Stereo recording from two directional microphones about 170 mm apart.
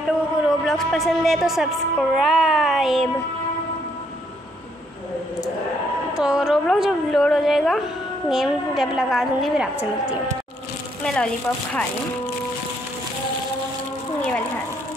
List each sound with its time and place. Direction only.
0.5 s a woman's voice: centre (ahead or behind)
6.1 s a woman's voice: 5° right (ahead or behind)
11.1 s a woman's voice: 5° left (ahead or behind)